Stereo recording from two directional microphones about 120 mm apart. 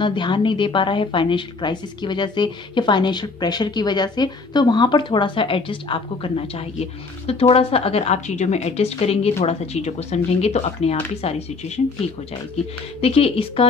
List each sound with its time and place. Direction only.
0.0 s a woman's voice: 40° left (ahead or behind); by 11.8 s 65° left (ahead or behind)
13.0 s a woman's voice: 55° left (ahead or behind)